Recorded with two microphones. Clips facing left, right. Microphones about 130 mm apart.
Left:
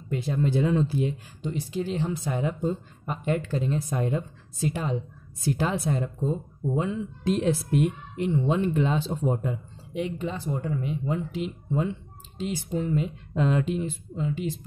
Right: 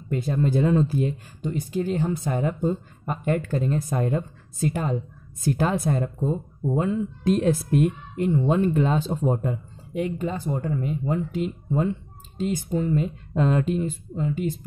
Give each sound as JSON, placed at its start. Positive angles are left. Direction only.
{"t": 0.1, "sound": "speech", "side_deg": -50}